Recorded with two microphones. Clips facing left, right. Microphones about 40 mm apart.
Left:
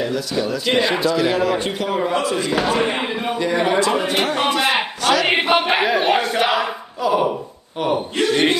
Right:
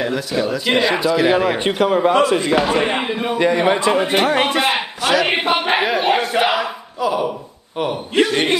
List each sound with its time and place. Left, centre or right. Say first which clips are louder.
0.0 s a man's voice: right 1 dB; right
0.4 s speech: right 2 dB; centre
0.7 s a man's voice: right 1 dB; centre
1.1 s a man's voice: right 2 dB; right
2.9 s speech: right 2 dB; centre
3.3 s a man's voice: right 5 dB; right
3.7 s a man's voice: right 2 dB; right
4.3 s a man's voice: right 2 dB; right
5.0 s speech: right 1 dB; centre
5.3 s a sound: left 1 dB; centre
8.2 s speech: right 2 dB; centre